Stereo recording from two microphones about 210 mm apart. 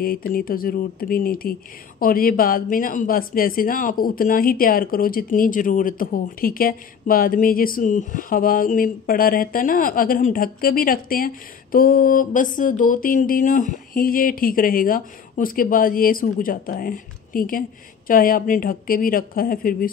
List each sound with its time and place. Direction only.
0.0 s speech: 45° left (ahead or behind)